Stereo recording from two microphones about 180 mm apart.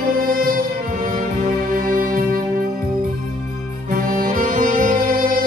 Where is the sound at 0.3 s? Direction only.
55° right (ahead or behind).